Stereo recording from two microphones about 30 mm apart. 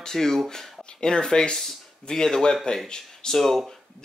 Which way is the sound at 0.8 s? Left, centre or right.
Left.